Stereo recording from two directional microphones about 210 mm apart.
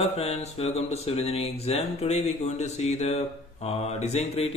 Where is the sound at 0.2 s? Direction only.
30° left (ahead or behind).